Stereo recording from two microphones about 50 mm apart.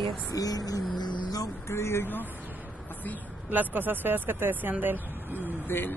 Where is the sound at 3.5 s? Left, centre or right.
Right.